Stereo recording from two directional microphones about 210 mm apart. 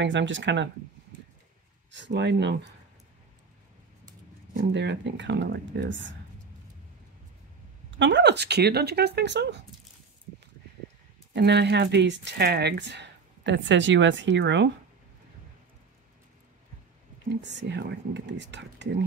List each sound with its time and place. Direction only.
0.0 s speech: 60° right (ahead or behind)
1.9 s speech: 60° right (ahead or behind)
4.7 s speech: 55° right (ahead or behind)
8.0 s speech: 55° right (ahead or behind)
11.3 s speech: 55° right (ahead or behind)
17.4 s speech: 55° right (ahead or behind)